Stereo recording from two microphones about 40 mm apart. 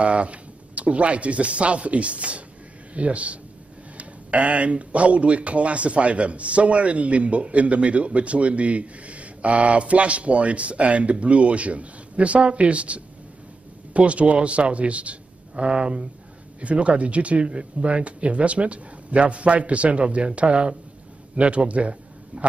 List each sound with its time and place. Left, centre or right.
0.0 s a man's voice: right